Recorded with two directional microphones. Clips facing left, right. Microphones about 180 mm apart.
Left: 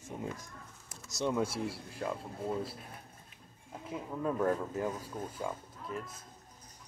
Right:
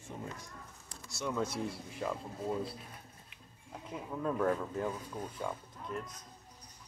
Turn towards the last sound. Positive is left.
turn(degrees=0)  # may be behind; listen again after turning